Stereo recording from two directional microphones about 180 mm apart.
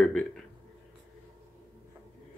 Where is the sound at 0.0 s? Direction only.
5° left (ahead or behind).